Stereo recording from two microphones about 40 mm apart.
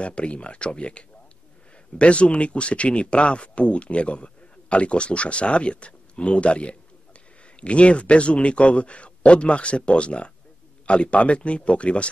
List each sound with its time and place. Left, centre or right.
0.0 s speech: left